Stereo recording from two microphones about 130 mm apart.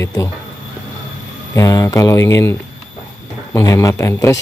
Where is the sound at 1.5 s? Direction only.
25° left (ahead or behind).